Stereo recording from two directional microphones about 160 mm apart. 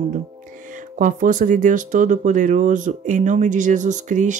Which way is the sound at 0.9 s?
55° right (ahead or behind).